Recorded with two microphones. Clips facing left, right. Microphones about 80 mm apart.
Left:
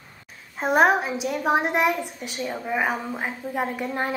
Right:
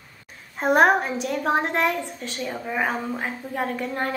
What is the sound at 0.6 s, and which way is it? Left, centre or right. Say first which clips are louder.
A woman's voice: right 1 dB; centre.